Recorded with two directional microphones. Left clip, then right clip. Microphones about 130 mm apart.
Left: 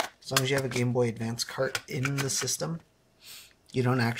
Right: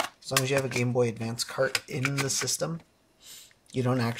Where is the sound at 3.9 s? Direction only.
40° left (ahead or behind).